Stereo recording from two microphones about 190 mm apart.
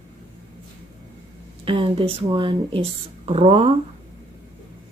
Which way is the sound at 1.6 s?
30° right (ahead or behind).